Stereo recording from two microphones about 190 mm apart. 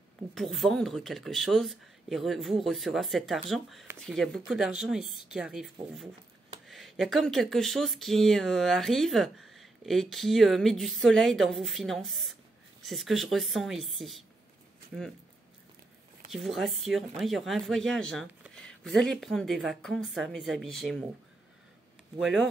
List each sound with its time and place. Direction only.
0.3 s speech: centre (ahead or behind)
6.7 s speech: centre (ahead or behind)
16.3 s speech: centre (ahead or behind)
22.2 s speech: centre (ahead or behind)